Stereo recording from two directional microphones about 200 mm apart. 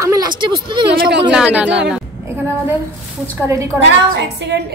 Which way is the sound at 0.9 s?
55° right (ahead or behind).